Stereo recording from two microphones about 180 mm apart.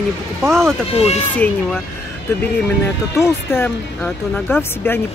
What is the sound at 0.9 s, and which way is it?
Speech, 35° left (ahead or behind).